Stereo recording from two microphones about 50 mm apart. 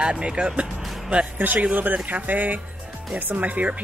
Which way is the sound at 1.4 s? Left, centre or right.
Right.